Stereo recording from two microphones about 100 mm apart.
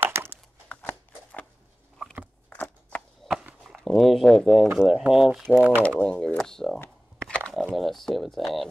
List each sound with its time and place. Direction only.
0.0 s a sound: 20° right (ahead or behind)
0.7 s scissors: 15° left (ahead or behind)
2.6 s horse: centre (ahead or behind)
3.6 s speech: centre (ahead or behind)
5.8 s speech: 15° left (ahead or behind)
7.2 s a sound: 10° left (ahead or behind)
7.7 s speech: centre (ahead or behind)